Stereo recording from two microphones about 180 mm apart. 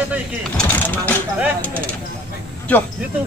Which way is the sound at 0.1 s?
5° left (ahead or behind).